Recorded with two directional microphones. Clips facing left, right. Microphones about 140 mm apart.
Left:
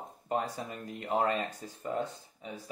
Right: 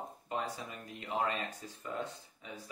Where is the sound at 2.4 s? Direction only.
35° left (ahead or behind).